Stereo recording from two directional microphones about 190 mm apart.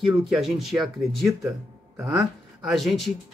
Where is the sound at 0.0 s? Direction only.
Centre (ahead or behind).